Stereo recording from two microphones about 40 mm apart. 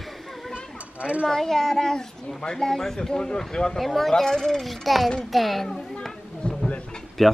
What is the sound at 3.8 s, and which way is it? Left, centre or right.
A child's voice, centre.